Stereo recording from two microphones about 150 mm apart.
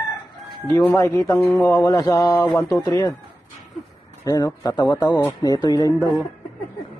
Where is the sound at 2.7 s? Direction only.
20° left (ahead or behind).